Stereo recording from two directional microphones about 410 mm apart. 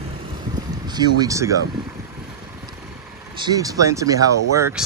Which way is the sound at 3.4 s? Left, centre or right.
Centre.